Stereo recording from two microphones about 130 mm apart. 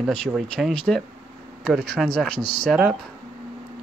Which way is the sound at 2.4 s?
40° left (ahead or behind).